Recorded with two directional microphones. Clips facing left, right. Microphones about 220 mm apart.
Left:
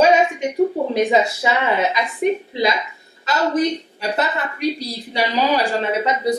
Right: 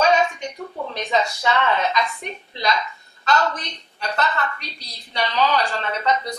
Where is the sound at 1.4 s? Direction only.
10° left (ahead or behind).